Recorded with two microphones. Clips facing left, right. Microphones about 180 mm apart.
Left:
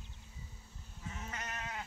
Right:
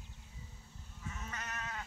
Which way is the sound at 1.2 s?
20° left (ahead or behind).